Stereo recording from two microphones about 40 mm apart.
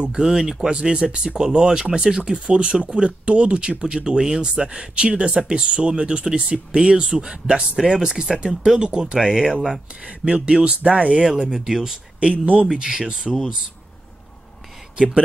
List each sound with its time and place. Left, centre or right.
0.2 s speech: centre
10.0 s speech: right
11.2 s speech: centre
12.2 s speech: right
12.7 s speech: centre